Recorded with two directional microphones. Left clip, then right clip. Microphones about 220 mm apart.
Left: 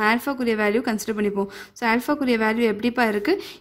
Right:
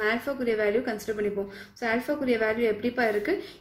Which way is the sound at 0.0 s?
50° left (ahead or behind).